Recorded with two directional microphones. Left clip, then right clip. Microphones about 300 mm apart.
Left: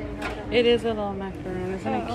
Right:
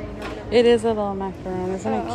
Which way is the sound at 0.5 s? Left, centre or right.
Centre.